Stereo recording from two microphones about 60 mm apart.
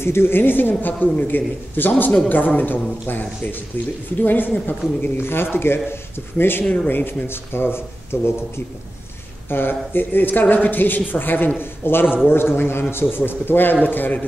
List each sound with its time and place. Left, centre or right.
0.0 s speech: left
9.5 s speech: left